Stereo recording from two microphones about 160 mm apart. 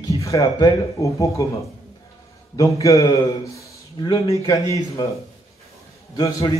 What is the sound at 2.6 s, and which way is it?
A man's voice, 20° left (ahead or behind).